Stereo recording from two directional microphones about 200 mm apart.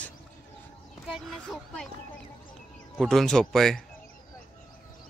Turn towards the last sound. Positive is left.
turn(degrees=0)  # may be behind; listen again after turning